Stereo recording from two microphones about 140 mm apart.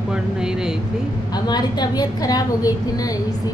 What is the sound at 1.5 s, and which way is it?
A woman's voice, 30° left (ahead or behind).